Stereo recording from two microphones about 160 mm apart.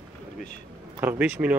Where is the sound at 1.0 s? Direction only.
10° right (ahead or behind).